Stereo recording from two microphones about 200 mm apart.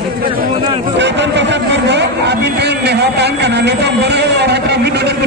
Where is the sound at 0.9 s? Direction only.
60° right (ahead or behind).